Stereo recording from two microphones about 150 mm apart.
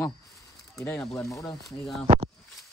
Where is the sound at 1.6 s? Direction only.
Centre (ahead or behind).